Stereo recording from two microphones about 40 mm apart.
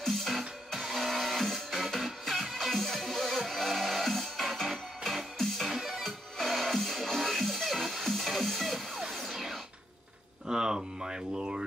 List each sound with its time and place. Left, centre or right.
0.0 s music: centre
6.0 s music: centre
10.5 s a sound: centre